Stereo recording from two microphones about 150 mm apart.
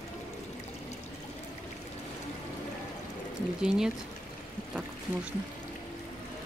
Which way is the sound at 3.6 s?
5° right (ahead or behind).